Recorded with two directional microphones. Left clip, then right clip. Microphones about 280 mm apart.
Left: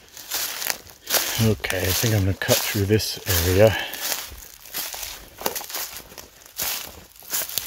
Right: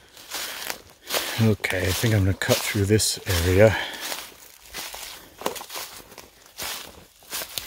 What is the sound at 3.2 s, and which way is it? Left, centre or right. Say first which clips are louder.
Speech: left 1 dB; left.